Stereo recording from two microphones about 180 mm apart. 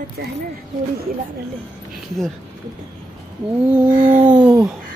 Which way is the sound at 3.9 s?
35° right (ahead or behind).